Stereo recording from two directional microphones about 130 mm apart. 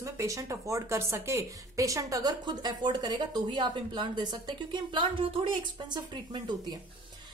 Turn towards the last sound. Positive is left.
turn(degrees=-35)  # may be behind; listen again after turning